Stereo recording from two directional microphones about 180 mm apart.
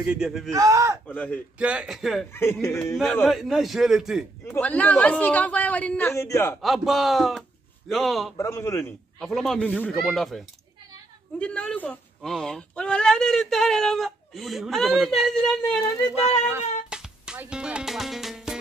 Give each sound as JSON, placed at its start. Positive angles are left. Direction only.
{"t": 0.0, "sound": "speech", "side_deg": -5}
{"t": 0.5, "sound": "speech", "side_deg": -20}
{"t": 1.0, "sound": "speech", "side_deg": 5}
{"t": 1.6, "sound": "speech", "side_deg": -5}
{"t": 2.3, "sound": "speech", "side_deg": 15}
{"t": 3.0, "sound": "speech", "side_deg": 5}
{"t": 4.5, "sound": "speech", "side_deg": 10}
{"t": 6.6, "sound": "speech", "side_deg": 0}
{"t": 8.4, "sound": "speech", "side_deg": 15}
{"t": 9.2, "sound": "speech", "side_deg": 0}
{"t": 16.5, "sound": "music", "side_deg": -5}